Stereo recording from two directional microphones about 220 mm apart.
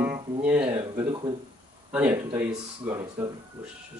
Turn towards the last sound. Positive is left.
turn(degrees=-15)  # may be behind; listen again after turning